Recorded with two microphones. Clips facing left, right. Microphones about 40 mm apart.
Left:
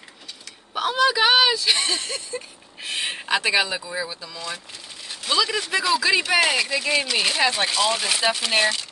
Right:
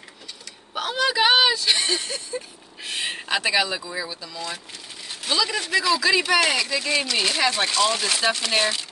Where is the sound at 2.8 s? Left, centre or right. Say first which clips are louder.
Left 1 dB; centre.